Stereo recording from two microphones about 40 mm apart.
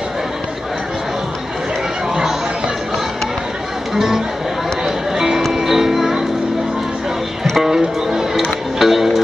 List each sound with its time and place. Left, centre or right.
3.9 s speech: centre
4.8 s music: centre
7.7 s music: centre